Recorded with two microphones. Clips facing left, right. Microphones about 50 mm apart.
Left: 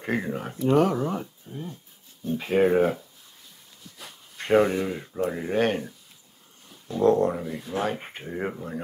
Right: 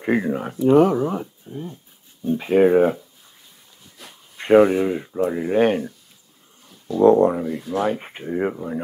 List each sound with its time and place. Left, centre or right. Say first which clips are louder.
0.0 s speech: right 7 dB; centre
4.1 s speech: right 7 dB; centre
7.0 s speech: right 7 dB; centre
7.4 s speech: right 6 dB; centre